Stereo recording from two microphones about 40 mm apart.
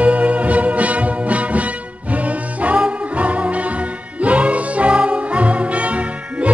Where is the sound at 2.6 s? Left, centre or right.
Right.